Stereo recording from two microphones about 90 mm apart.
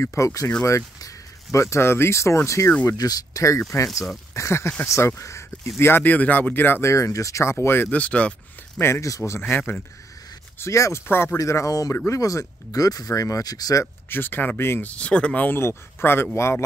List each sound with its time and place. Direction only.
0.0 s speech: 35° left (ahead or behind)
3.0 s speech: 45° left (ahead or behind); by 8.8 s 15° left (ahead or behind)
9.0 s speech: 35° left (ahead or behind)
9.5 s speech: 15° left (ahead or behind)
10.6 s speech: 35° left (ahead or behind)
11.3 s speech: 35° left (ahead or behind)
14.0 s speech: 25° left (ahead or behind)
14.9 s speech: 10° left (ahead or behind); by 16.6 s 30° left (ahead or behind)